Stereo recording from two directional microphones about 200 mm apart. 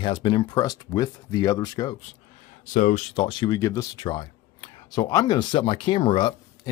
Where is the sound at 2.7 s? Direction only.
40° left (ahead or behind).